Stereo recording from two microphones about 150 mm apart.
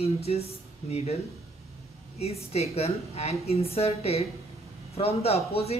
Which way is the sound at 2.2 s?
45° left (ahead or behind).